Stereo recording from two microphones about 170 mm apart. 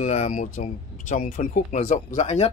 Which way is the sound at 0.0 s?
45° left (ahead or behind).